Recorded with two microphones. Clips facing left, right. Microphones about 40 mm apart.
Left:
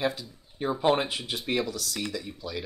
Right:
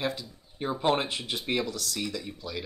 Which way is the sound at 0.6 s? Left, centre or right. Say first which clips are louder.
Left 2 dB; centre.